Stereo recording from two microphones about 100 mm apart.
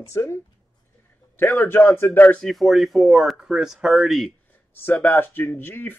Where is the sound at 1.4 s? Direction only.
20° left (ahead or behind).